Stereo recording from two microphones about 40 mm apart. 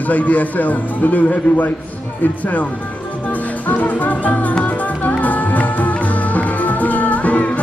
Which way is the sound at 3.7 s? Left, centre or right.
Left.